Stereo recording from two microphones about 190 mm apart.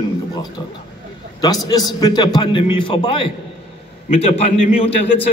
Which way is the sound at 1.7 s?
20° left (ahead or behind).